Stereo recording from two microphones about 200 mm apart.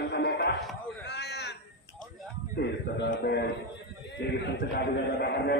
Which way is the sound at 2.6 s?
60° left (ahead or behind).